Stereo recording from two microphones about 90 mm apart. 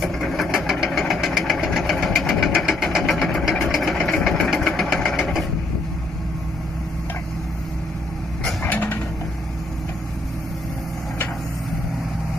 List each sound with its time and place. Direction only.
0.0 s engine: centre (ahead or behind)
4.0 s vehicle: 10° left (ahead or behind)
4.5 s engine: centre (ahead or behind)
8.6 s mechanisms: 20° left (ahead or behind)